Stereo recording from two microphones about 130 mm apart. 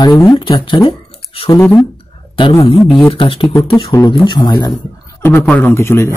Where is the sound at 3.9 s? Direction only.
25° left (ahead or behind).